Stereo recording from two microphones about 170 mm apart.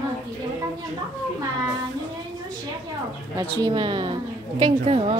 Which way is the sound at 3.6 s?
25° right (ahead or behind).